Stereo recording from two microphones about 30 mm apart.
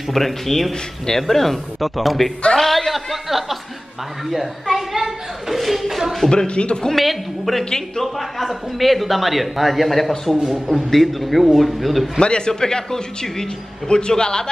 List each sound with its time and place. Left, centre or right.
0.1 s a man's voice: centre
4.7 s a man's voice: centre
6.3 s speech: left
6.9 s a man's voice: centre
12.2 s a man's voice: left
13.8 s a man's voice: left